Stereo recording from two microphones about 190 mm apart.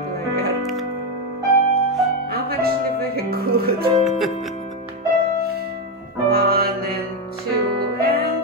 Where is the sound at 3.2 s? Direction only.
55° right (ahead or behind).